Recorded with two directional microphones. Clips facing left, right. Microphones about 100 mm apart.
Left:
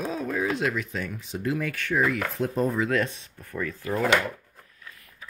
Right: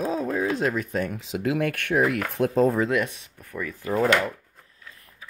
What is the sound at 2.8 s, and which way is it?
Speech, 15° right (ahead or behind).